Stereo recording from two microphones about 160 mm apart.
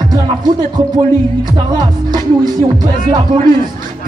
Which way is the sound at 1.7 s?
25° right (ahead or behind).